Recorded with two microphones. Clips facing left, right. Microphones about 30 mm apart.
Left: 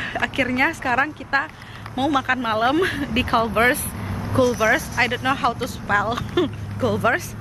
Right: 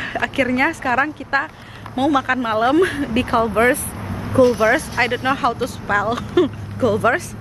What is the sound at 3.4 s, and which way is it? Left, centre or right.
Speech, left.